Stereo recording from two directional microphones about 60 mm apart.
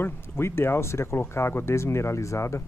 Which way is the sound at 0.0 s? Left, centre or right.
Left.